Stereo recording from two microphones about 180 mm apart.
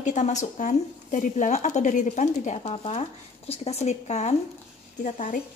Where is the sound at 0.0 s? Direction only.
40° left (ahead or behind).